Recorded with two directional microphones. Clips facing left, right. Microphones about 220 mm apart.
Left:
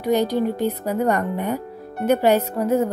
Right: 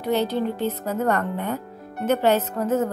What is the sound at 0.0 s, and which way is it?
Speech, 15° left (ahead or behind).